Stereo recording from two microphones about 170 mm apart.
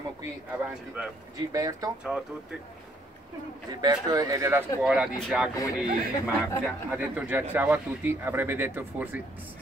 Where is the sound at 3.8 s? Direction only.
25° right (ahead or behind).